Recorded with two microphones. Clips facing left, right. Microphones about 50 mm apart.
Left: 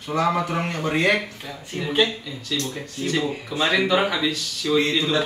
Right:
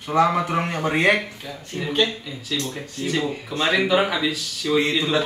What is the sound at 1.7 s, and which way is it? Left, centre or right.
Speech, centre.